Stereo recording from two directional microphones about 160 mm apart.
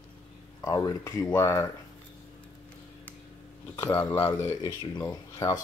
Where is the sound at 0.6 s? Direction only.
20° left (ahead or behind).